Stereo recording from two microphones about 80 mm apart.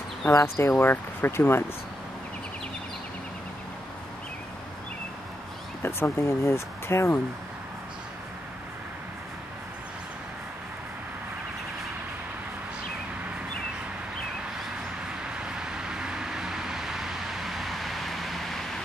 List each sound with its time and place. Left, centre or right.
0.3 s speech: left
5.8 s speech: left
15.3 s vehicle: centre